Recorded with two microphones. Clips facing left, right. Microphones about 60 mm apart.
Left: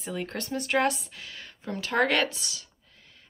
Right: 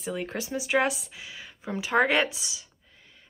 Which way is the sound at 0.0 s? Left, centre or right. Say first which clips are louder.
Right 2 dB; centre.